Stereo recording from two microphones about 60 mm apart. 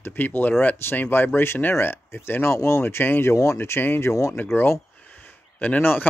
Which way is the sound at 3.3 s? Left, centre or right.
Left.